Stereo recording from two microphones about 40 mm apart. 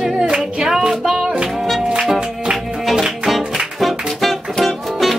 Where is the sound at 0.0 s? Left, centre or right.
Centre.